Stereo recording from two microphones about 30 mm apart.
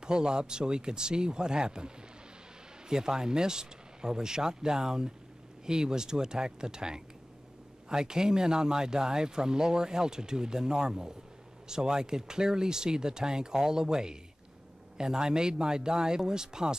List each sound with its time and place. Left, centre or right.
0.0 s speech: right
2.9 s speech: right